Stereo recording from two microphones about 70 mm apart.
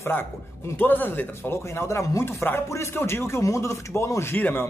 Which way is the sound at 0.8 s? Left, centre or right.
Left.